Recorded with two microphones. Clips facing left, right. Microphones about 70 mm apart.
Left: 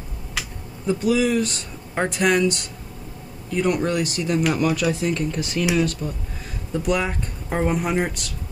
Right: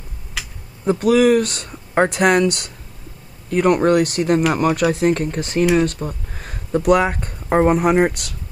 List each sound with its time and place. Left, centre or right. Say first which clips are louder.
0.4 s a sound: even; centre
0.8 s speech: right 6 dB; right
3.4 s speech: right 7 dB; right